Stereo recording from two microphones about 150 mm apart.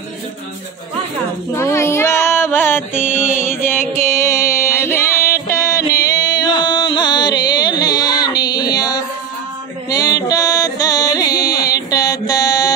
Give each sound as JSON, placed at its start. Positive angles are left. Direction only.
{"t": 1.5, "sound": "music", "side_deg": 20}